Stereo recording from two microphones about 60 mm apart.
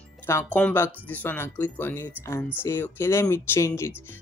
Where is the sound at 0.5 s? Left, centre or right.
Left.